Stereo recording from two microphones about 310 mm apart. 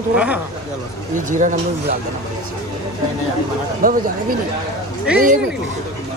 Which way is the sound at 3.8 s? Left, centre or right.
Right.